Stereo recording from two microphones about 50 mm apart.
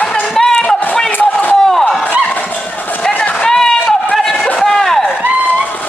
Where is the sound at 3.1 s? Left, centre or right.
Left.